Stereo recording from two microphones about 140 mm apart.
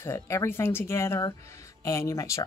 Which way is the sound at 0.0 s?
20° left (ahead or behind).